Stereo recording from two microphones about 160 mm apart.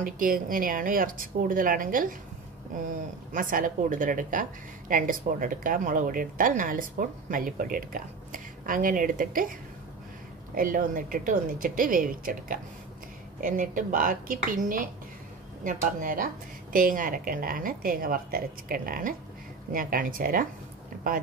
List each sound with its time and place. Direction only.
0.0 s a woman's voice: 60° right (ahead or behind)
3.3 s a woman's voice: 55° right (ahead or behind)